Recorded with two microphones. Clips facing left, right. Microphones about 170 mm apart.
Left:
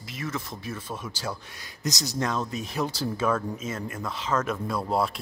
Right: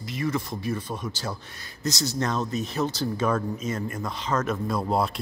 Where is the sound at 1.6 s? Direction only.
15° left (ahead or behind).